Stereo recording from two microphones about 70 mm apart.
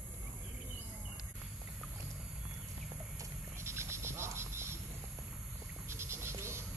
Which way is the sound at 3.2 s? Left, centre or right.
Right.